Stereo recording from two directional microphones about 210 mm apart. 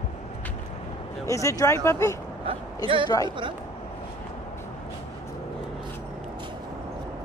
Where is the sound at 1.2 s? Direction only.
15° left (ahead or behind).